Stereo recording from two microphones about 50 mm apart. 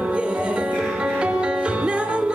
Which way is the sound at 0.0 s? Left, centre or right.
Right.